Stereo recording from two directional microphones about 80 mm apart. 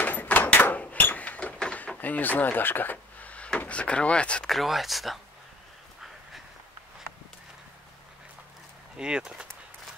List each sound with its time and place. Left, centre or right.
0.0 s door: left
1.6 s speech: centre
4.5 s speech: centre
8.9 s speech: centre